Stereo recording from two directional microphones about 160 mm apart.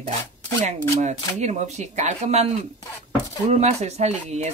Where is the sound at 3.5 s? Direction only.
45° right (ahead or behind).